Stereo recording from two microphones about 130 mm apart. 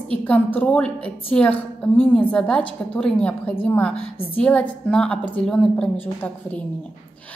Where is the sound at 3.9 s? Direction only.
45° left (ahead or behind).